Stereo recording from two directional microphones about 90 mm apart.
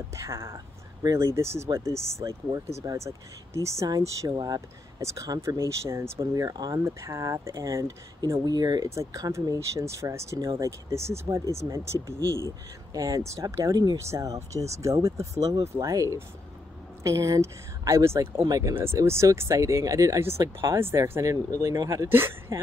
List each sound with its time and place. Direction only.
0.1 s speech: 30° right (ahead or behind)
3.9 s a woman's voice: 50° right (ahead or behind)
4.6 s speech: 35° right (ahead or behind)
6.8 s speech: 30° right (ahead or behind); by 8.8 s 45° right (ahead or behind)
8.8 s speech: 35° right (ahead or behind)
12.2 s speech: 40° left (ahead or behind)
12.9 s speech: 40° right (ahead or behind)
13.9 s speech: 35° right (ahead or behind)